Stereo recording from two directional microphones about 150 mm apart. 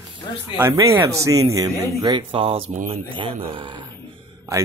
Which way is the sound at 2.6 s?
60° right (ahead or behind).